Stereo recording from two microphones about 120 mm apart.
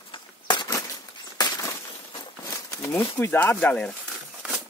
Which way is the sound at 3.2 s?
15° left (ahead or behind).